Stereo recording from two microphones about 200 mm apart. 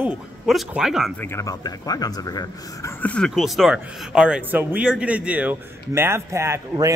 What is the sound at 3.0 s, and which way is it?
Speech, 5° left (ahead or behind).